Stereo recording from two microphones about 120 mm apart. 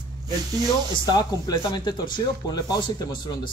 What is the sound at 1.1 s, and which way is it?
Speech, 35° left (ahead or behind).